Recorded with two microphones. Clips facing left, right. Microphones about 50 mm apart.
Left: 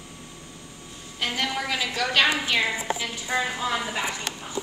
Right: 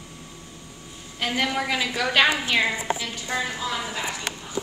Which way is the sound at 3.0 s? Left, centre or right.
Centre.